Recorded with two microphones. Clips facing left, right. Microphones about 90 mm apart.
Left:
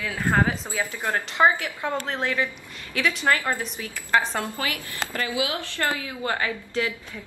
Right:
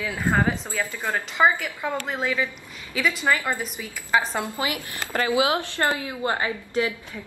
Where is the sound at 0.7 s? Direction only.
15° left (ahead or behind).